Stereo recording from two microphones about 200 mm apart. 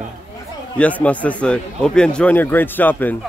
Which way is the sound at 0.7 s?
5° left (ahead or behind).